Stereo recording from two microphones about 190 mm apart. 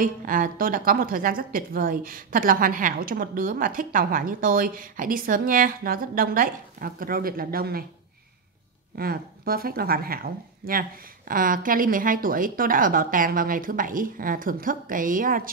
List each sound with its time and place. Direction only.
0.0 s a woman's voice: 45° right (ahead or behind)
8.9 s a woman's voice: 50° right (ahead or behind)